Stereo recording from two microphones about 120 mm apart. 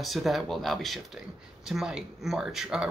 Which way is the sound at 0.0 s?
Centre (ahead or behind).